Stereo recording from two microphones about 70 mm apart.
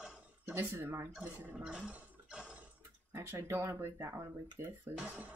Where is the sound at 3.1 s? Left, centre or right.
Right.